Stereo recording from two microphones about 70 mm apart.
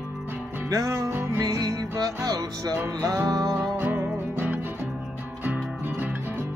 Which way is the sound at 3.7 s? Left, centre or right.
Right.